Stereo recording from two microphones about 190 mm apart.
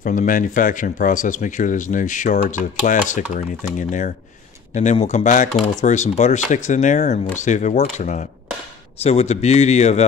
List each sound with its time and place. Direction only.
0.0 s speech: 45° left (ahead or behind)